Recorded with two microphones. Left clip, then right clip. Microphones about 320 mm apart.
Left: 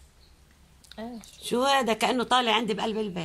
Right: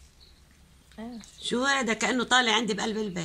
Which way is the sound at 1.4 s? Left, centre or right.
Centre.